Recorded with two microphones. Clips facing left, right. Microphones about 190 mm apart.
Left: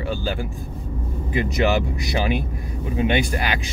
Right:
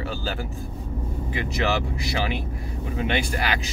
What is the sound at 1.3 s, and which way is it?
Speech, 20° left (ahead or behind).